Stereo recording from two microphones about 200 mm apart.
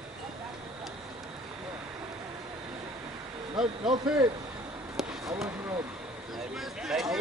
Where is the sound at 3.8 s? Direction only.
20° right (ahead or behind).